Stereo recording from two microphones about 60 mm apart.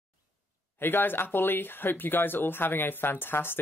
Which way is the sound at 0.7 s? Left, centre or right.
Left.